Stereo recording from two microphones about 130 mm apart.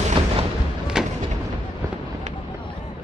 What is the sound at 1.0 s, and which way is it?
Artillery fire, 5° right (ahead or behind).